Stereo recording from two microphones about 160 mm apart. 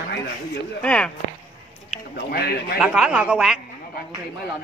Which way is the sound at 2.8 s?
5° right (ahead or behind).